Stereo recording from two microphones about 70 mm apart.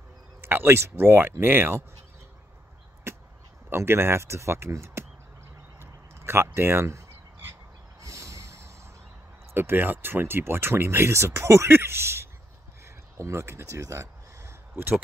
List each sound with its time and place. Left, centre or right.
0.4 s speech: right
3.1 s chop: right
3.7 s speech: right
5.8 s crow: right
8.0 s vehicle: right
9.5 s speech: right
12.8 s a sound: right